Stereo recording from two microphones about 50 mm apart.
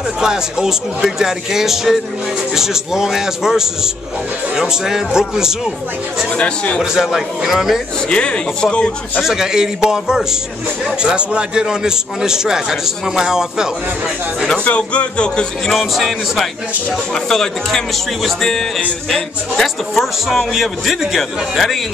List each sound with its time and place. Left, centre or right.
0.2 s a man's voice: centre
6.3 s speech: left
6.8 s a man's voice: centre
8.1 s speech: centre
9.2 s a man's voice: centre
14.6 s speech: left
15.7 s a man's voice: centre